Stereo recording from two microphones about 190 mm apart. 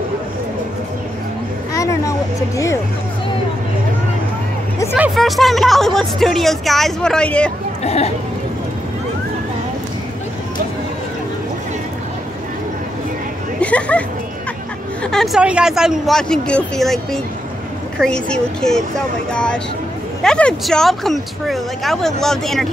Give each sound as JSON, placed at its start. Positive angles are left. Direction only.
{"t": 1.7, "sound": "speech", "side_deg": 15}
{"t": 4.9, "sound": "speech", "side_deg": -5}
{"t": 7.8, "sound": "speech", "side_deg": 35}
{"t": 13.6, "sound": "a sound", "side_deg": 5}
{"t": 15.0, "sound": "speech", "side_deg": 0}